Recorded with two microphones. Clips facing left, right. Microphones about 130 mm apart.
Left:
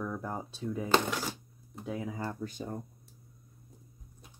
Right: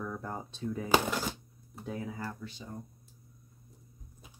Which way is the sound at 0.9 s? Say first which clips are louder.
Right 1 dB; centre (ahead or behind).